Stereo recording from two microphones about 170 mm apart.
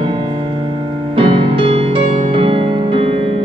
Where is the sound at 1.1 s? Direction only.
30° right (ahead or behind).